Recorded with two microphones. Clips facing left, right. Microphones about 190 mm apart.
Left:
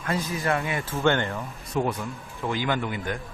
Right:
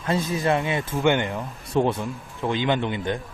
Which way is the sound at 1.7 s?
30° right (ahead or behind).